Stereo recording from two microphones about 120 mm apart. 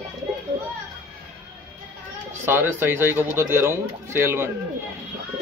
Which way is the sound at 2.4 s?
20° right (ahead or behind).